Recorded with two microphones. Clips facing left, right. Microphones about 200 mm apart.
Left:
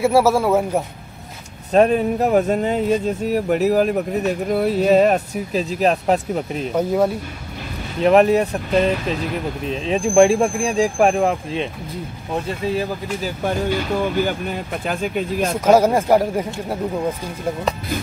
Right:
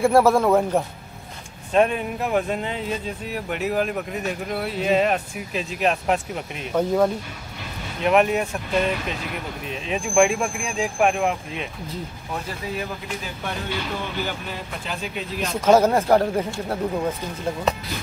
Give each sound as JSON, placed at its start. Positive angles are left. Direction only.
{"t": 0.0, "sound": "speech", "side_deg": 5}
{"t": 1.7, "sound": "speech", "side_deg": 35}
{"t": 6.7, "sound": "speech", "side_deg": 10}
{"t": 8.0, "sound": "speech", "side_deg": 35}
{"t": 9.7, "sound": "speech", "side_deg": 35}
{"t": 15.6, "sound": "speech", "side_deg": 10}